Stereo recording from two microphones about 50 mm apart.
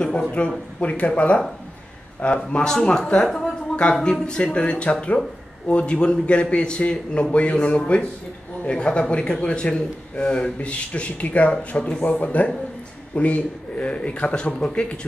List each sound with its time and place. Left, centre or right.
0.0 s a man's voice: left
2.5 s a man's voice: centre